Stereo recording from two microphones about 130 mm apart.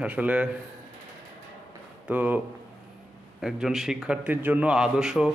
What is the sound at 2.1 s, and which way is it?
A man's voice, 10° right (ahead or behind).